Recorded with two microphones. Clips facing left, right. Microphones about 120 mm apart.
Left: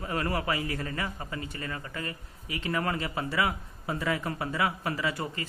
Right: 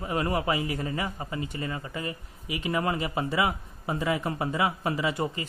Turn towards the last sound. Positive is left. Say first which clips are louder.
# right 3 dB
turn(degrees=-20)  # may be behind; listen again after turning